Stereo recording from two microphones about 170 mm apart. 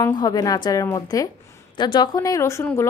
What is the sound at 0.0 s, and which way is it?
A woman's voice, 25° left (ahead or behind).